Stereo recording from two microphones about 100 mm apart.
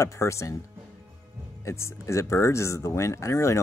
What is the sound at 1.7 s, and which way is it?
Speech, 30° left (ahead or behind).